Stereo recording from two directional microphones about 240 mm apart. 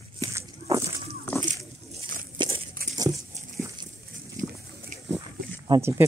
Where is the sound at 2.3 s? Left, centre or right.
Right.